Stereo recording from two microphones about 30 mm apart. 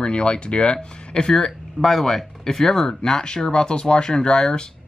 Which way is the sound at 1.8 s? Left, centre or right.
Centre.